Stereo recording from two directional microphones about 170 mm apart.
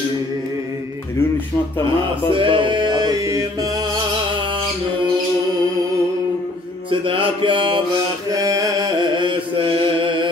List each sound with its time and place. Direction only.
2.3 s music: 30° right (ahead or behind)
6.9 s music: 30° right (ahead or behind)
8.3 s mantra: 20° right (ahead or behind)